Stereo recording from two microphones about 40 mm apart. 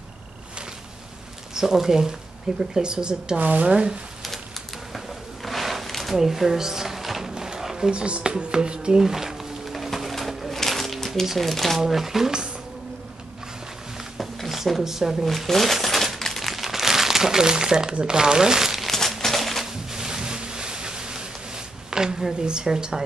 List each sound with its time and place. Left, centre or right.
1.5 s speech: centre
3.3 s speech: right
3.7 s speech: right
4.9 s a sound: centre
6.1 s drawer open or close: centre
7.9 s speech: right
9.0 s music: centre
11.3 s speech: centre
11.8 s speech: centre
14.1 s a sound: centre
15.2 s crumpling: centre
18.8 s crumpling: centre
19.2 s a sound: centre
19.6 s a sound: centre